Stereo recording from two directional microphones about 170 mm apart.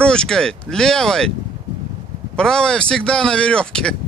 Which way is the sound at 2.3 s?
5° left (ahead or behind).